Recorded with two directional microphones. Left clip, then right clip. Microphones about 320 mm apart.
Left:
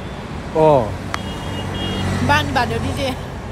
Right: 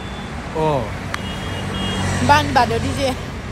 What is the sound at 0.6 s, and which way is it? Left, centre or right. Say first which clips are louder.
Speech: left 7 dB; left.